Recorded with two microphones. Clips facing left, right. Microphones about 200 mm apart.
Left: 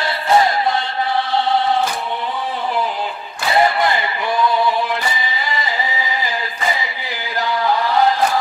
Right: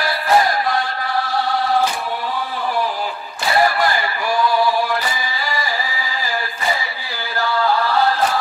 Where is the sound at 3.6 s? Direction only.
20° left (ahead or behind).